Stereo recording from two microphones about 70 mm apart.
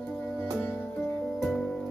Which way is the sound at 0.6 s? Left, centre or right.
Left.